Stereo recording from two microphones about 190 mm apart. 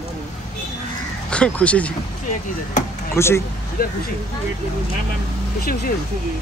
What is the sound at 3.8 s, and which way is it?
Speech, 55° left (ahead or behind).